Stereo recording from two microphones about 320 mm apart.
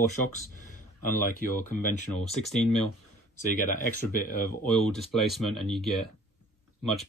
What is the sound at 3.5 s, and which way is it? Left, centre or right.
Speech, left.